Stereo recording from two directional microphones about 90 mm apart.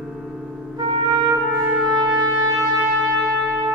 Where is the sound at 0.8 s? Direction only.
60° right (ahead or behind).